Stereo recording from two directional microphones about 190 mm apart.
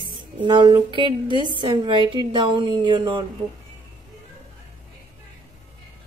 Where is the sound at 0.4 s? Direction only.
25° right (ahead or behind).